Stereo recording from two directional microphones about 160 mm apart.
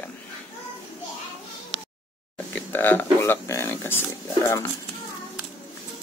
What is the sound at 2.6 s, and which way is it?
Speech, 10° left (ahead or behind).